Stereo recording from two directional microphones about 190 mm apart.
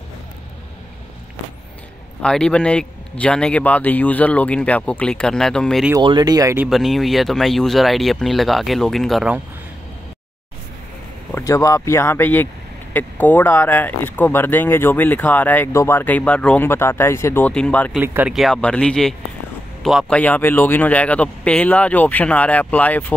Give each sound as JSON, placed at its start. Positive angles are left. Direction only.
{"t": 2.2, "sound": "speech", "side_deg": 5}
{"t": 6.0, "sound": "speech", "side_deg": -20}
{"t": 6.7, "sound": "speech", "side_deg": 0}
{"t": 11.3, "sound": "speech", "side_deg": 15}
{"t": 17.9, "sound": "speech", "side_deg": -10}